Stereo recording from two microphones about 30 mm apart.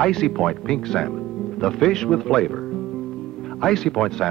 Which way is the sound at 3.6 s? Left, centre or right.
Centre.